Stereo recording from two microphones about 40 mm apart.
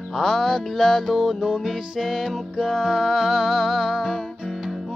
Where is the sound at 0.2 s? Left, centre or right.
Centre.